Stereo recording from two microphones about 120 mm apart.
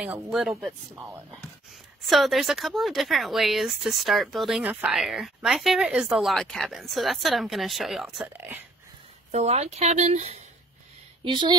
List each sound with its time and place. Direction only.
0.0 s speech: 5° right (ahead or behind)
0.9 s speech: 25° right (ahead or behind)
1.3 s speech: centre (ahead or behind)
8.4 s speech: 15° right (ahead or behind)
9.3 s speech: 65° right (ahead or behind)
11.2 s speech: 40° right (ahead or behind)